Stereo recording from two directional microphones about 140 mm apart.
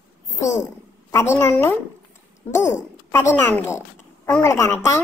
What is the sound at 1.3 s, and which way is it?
A woman's voice, 20° left (ahead or behind).